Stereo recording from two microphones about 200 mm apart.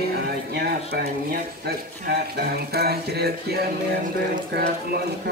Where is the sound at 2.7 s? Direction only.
50° right (ahead or behind).